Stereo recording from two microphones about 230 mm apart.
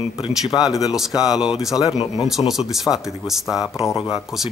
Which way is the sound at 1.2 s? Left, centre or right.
Centre.